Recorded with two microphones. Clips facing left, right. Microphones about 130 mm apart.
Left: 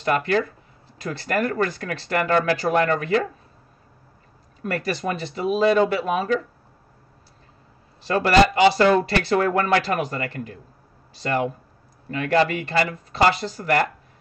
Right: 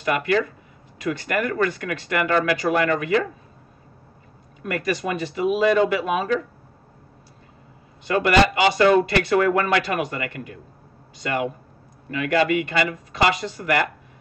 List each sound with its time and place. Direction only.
0.0 s speech: 35° left (ahead or behind)
4.6 s speech: 35° left (ahead or behind)
8.0 s speech: 35° left (ahead or behind)